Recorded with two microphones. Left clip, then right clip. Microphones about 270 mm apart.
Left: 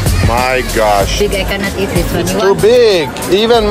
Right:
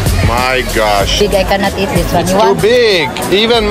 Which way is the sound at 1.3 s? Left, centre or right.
Right.